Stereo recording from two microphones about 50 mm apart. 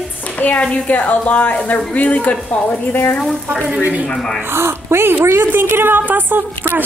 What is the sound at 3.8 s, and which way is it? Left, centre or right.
Speech, right.